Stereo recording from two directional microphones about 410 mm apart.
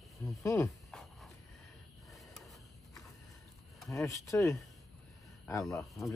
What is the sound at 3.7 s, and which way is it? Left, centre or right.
Speech, centre.